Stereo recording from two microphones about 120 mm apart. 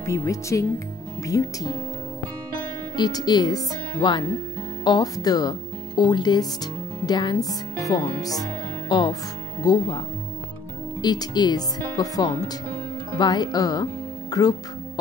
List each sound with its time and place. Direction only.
0.0 s speech: 25° left (ahead or behind)
3.0 s speech: 35° left (ahead or behind)